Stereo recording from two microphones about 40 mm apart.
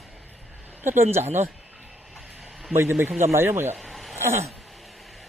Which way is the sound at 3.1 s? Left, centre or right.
Right.